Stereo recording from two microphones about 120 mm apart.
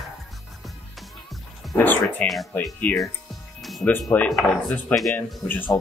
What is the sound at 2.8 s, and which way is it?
Speech, 10° left (ahead or behind).